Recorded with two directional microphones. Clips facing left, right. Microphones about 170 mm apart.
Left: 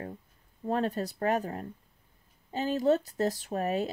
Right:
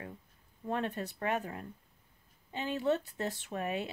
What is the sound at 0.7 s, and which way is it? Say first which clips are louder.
Speech: left 5 dB; 35° left (ahead or behind).